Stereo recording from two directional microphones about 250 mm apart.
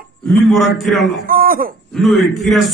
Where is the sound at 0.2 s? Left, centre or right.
Centre.